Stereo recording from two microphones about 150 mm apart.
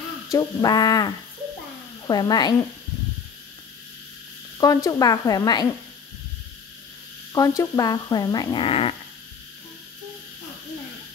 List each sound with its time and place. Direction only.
0.3 s speech: 25° left (ahead or behind)
4.6 s speech: 25° left (ahead or behind)
7.3 s speech: 20° left (ahead or behind); by 8.9 s 40° left (ahead or behind)